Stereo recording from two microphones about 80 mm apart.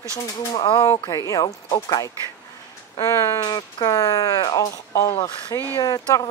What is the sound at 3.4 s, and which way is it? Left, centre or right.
Speech, left.